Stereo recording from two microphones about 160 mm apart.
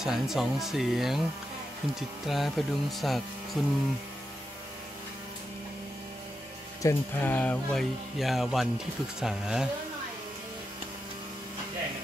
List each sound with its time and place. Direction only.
0.0 s speech: centre (ahead or behind)
6.8 s speech: 15° left (ahead or behind)
8.2 s speech: centre (ahead or behind)